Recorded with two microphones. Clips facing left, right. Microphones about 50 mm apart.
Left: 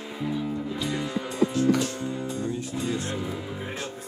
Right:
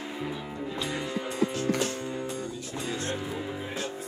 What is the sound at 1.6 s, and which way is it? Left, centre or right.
Music, right.